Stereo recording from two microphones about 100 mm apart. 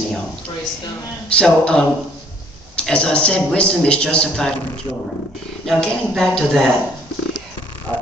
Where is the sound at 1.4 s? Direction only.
10° left (ahead or behind).